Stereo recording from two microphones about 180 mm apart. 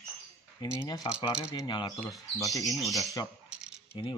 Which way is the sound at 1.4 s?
20° left (ahead or behind).